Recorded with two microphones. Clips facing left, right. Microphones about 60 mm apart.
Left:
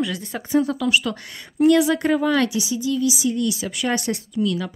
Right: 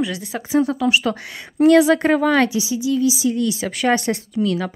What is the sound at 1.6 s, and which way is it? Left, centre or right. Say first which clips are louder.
Speech: right 4 dB; right.